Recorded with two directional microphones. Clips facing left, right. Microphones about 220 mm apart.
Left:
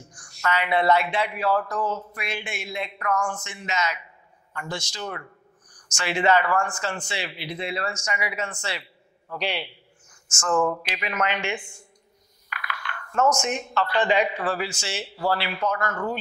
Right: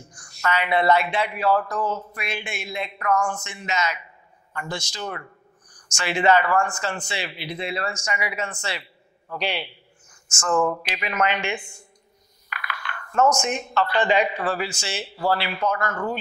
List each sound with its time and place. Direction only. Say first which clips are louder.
0.4 s a man's voice: right 1 dB; 15° right (ahead or behind)
2.1 s a man's voice: right 1 dB; 15° right (ahead or behind)
3.4 s a man's voice: right 1 dB; 10° right (ahead or behind)
4.9 s a man's voice: right 1 dB; 25° right (ahead or behind)
10.4 s a man's voice: right 1 dB; 25° right (ahead or behind)
12.5 s coin: right 1 dB; 20° right (ahead or behind)
13.5 s a man's voice: right 2 dB; 15° right (ahead or behind)